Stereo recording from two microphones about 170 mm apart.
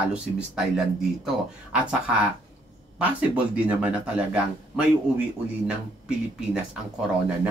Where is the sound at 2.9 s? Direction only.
10° right (ahead or behind).